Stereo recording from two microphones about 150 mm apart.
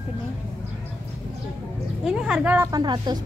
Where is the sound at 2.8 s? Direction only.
25° right (ahead or behind).